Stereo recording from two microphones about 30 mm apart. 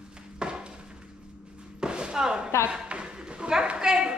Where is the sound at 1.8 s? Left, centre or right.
Right.